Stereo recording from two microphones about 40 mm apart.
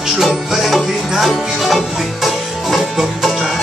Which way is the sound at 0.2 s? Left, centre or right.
Centre.